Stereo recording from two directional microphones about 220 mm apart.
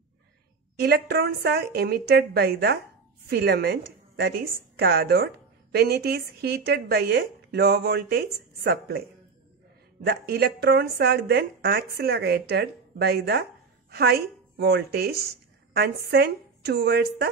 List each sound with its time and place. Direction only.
0.8 s a woman's voice: 45° right (ahead or behind)
10.0 s speech: 45° right (ahead or behind)